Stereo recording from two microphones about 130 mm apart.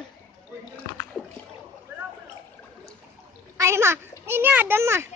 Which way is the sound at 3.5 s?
20° right (ahead or behind).